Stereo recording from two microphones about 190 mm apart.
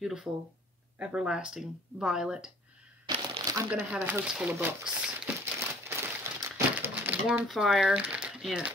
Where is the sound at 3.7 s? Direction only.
10° right (ahead or behind).